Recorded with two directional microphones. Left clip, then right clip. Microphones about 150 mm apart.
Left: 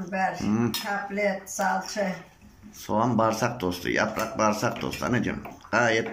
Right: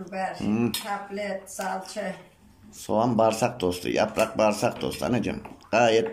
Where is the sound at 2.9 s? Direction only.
15° right (ahead or behind).